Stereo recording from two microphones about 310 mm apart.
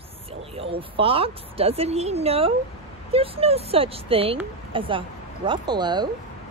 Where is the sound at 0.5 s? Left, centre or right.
Centre.